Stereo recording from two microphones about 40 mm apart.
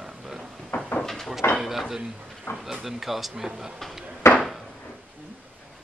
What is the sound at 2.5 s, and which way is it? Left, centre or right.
Speech, left.